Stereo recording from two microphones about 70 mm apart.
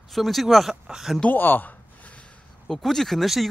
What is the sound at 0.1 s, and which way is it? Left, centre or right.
Speech, centre.